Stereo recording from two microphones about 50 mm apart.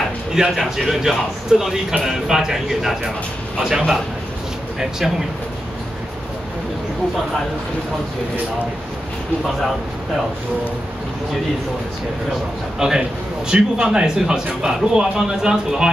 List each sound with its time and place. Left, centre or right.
0.3 s speech: centre
12.7 s speech: centre